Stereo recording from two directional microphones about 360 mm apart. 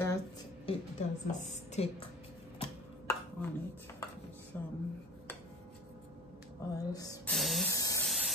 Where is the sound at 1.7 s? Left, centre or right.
Centre.